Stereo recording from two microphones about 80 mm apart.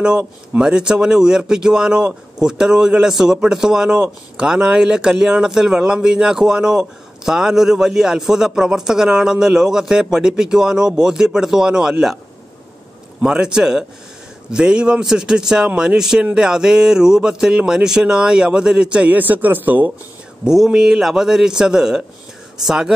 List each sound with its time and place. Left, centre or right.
0.0 s speech: centre
13.2 s speech: centre
20.4 s a man's voice: centre